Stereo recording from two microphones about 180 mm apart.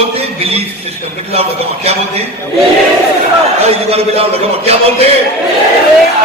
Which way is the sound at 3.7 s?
35° right (ahead or behind).